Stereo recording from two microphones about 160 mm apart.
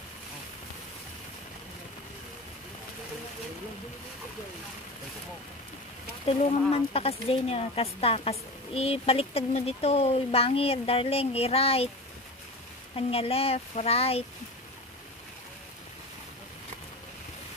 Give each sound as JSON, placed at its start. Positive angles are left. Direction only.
{"t": 6.7, "sound": "speech", "side_deg": 40}
{"t": 12.9, "sound": "speech", "side_deg": 35}